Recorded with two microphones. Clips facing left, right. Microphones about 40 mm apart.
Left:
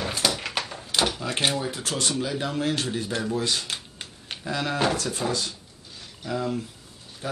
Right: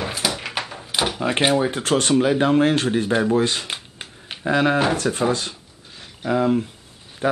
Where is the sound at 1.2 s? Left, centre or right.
Right.